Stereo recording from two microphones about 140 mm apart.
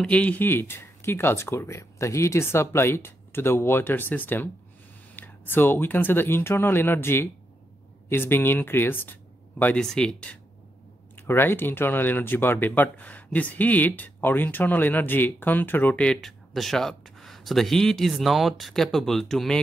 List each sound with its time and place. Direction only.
0.0 s speech: 10° left (ahead or behind)